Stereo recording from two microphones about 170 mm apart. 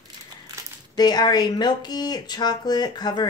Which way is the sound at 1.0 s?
25° left (ahead or behind).